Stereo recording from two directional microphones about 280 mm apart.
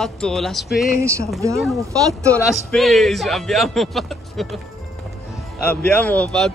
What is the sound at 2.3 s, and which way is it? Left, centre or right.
Speech, centre.